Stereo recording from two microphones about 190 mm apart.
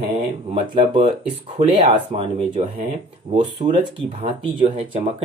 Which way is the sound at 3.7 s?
25° right (ahead or behind).